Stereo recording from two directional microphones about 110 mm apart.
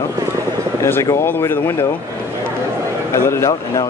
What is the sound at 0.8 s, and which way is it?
Speech, 25° left (ahead or behind).